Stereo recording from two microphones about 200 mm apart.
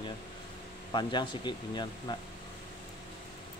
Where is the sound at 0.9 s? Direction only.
25° left (ahead or behind).